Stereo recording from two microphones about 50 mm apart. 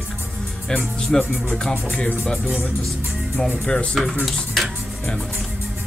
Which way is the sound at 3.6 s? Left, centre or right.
Centre.